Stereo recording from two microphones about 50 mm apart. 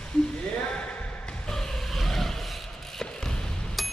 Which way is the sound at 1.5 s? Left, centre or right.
Centre.